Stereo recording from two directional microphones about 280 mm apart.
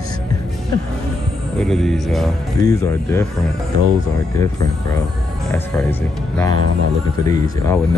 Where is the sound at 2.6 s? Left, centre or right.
Centre.